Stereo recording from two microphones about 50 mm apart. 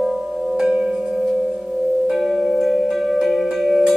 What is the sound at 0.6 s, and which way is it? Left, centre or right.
Singing bowl, centre.